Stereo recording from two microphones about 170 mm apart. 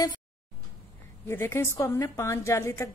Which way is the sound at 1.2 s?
15° left (ahead or behind).